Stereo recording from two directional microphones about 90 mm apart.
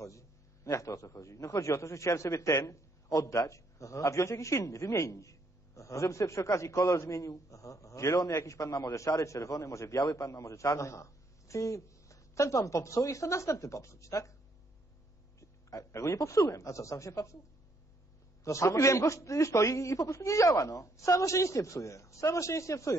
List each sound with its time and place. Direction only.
0.7 s a man's voice: 35° left (ahead or behind)
15.7 s a man's voice: 35° left (ahead or behind)
18.4 s a man's voice: 35° left (ahead or behind)